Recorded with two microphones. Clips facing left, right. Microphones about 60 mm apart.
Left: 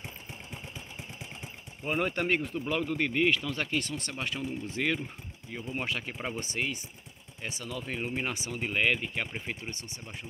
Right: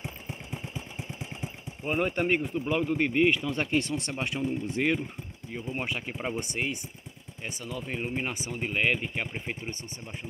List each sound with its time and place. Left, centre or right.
1.9 s speech: centre
3.5 s speech: right
5.5 s speech: centre